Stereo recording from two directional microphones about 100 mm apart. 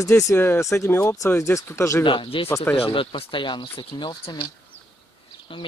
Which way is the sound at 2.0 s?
60° left (ahead or behind).